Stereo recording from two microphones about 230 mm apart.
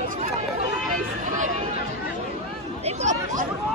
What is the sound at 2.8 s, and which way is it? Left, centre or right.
Speech, right.